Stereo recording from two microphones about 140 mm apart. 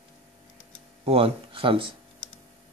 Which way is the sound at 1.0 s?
45° right (ahead or behind).